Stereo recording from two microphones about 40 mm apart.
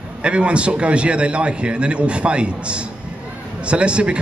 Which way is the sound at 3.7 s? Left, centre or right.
Right.